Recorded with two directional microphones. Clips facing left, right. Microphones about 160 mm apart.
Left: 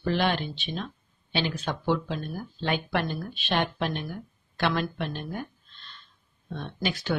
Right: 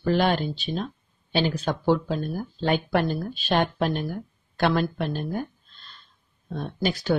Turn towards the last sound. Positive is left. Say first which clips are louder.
# right 5 dB
turn(degrees=-40)  # may be behind; listen again after turning